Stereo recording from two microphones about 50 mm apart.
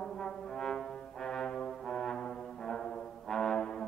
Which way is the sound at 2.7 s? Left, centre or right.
Centre.